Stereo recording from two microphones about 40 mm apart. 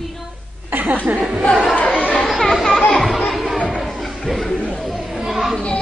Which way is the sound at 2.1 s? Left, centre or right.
Centre.